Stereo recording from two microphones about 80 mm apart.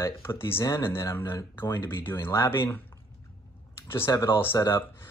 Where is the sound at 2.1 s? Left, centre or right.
Left.